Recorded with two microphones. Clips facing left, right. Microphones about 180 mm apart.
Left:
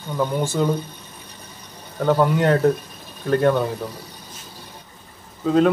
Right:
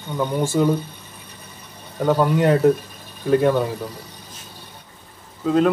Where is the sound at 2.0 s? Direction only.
5° right (ahead or behind).